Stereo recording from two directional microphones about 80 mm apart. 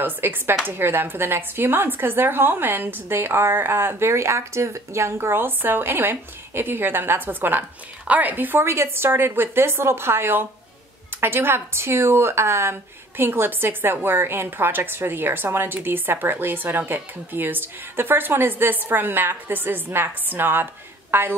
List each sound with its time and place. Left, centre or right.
0.0 s a woman's voice: right